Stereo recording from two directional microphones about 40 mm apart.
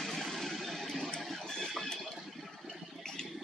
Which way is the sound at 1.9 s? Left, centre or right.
Centre.